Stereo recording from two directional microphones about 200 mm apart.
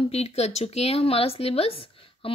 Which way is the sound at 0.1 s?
30° left (ahead or behind).